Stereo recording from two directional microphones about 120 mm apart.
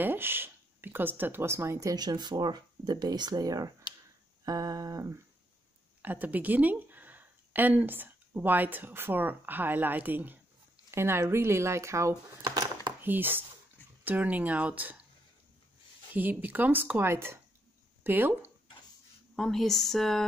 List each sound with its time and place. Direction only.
0.0 s speech: 20° right (ahead or behind)
4.5 s a sound: 30° right (ahead or behind)
6.0 s speech: 15° right (ahead or behind)
12.4 s a sound: 40° right (ahead or behind)
13.0 s a woman's voice: 15° right (ahead or behind)
16.1 s a woman's voice: 15° right (ahead or behind)
19.3 s speech: 5° left (ahead or behind)